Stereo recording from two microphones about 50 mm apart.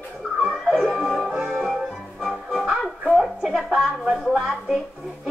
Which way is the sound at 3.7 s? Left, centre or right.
Centre.